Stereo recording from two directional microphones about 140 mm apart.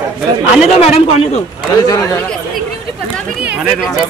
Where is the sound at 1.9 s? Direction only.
25° left (ahead or behind).